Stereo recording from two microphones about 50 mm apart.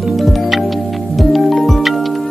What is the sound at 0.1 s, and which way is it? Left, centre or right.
Music, centre.